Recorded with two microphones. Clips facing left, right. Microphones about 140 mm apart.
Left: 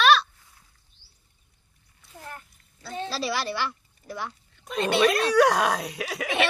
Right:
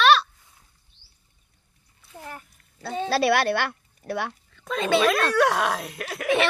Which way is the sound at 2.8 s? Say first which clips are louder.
Right 7 dB; 65° right (ahead or behind).